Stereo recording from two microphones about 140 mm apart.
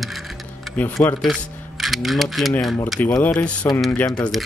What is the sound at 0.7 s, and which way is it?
Speech, 15° left (ahead or behind).